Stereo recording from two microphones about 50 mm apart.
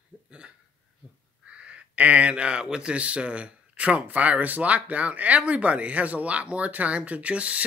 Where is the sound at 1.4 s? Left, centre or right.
Right.